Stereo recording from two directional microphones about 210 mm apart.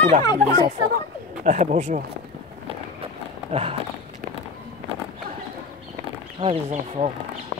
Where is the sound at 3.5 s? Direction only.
30° right (ahead or behind).